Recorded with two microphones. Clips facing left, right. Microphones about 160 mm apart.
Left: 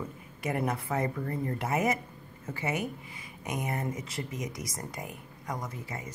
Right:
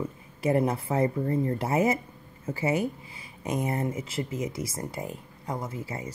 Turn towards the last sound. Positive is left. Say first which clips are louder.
# right 4 dB
turn(degrees=-30)  # may be behind; listen again after turning